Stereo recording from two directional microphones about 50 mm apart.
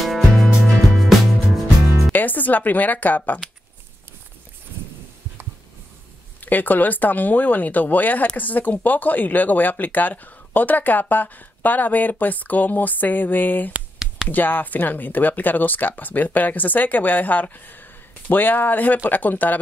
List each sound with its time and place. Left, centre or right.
0.0 s music: centre
2.1 s speech: left
6.4 s speech: left
13.9 s a sound: centre
14.3 s speech: left